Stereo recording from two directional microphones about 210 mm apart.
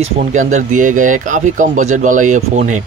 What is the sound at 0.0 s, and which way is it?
Speech, 35° right (ahead or behind).